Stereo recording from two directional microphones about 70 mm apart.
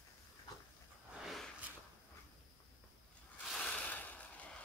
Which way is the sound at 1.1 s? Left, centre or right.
Centre.